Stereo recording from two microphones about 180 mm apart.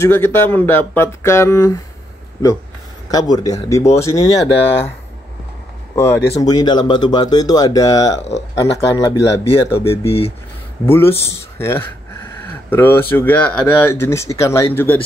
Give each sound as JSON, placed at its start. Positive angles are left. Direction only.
{"t": 0.0, "sound": "speech", "side_deg": 10}
{"t": 3.1, "sound": "speech", "side_deg": 20}
{"t": 5.9, "sound": "speech", "side_deg": 15}
{"t": 8.2, "sound": "speech", "side_deg": 35}
{"t": 8.5, "sound": "speech", "side_deg": 15}
{"t": 10.0, "sound": "speech", "side_deg": 35}
{"t": 10.9, "sound": "speech", "side_deg": 15}